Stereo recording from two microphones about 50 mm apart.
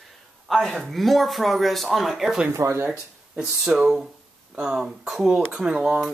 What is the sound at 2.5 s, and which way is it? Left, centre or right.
Speech, right.